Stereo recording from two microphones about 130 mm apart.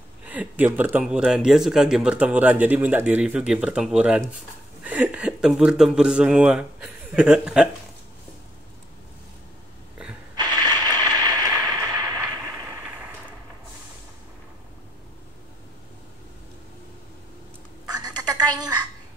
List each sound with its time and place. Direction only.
0.2 s speech: 10° right (ahead or behind)
10.3 s a sound: 30° right (ahead or behind)
17.8 s telephone: 30° right (ahead or behind)